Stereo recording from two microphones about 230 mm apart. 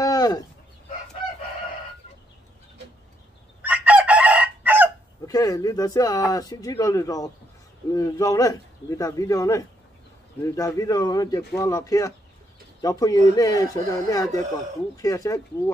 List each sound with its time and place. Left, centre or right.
0.0 s a sound: centre
3.6 s chicken: centre
5.2 s speech: centre